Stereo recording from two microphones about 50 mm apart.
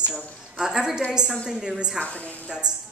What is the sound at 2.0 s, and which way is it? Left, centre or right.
Speech, left.